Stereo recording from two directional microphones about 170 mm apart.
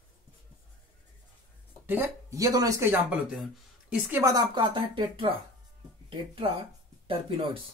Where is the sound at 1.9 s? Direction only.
15° right (ahead or behind).